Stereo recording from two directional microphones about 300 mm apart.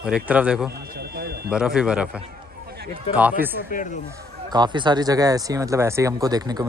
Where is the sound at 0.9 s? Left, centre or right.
Right.